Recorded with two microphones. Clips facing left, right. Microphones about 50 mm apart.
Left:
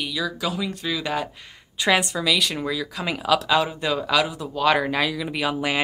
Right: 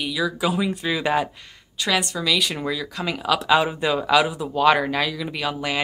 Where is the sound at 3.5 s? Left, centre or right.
Centre.